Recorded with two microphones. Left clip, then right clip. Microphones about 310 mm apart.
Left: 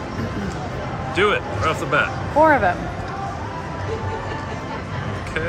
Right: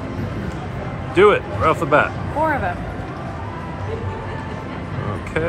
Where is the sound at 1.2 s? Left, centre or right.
Centre.